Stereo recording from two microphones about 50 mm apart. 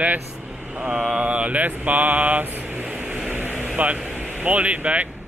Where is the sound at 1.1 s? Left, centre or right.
Right.